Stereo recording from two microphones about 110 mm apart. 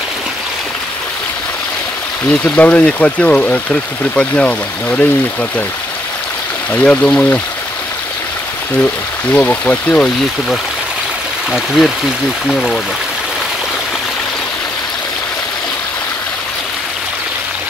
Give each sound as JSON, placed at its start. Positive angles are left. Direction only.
{"t": 2.4, "sound": "speech", "side_deg": 10}
{"t": 6.7, "sound": "speech", "side_deg": 15}
{"t": 8.8, "sound": "speech", "side_deg": 15}
{"t": 11.5, "sound": "speech", "side_deg": 0}